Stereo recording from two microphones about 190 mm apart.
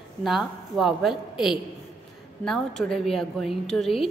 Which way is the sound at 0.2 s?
Centre (ahead or behind).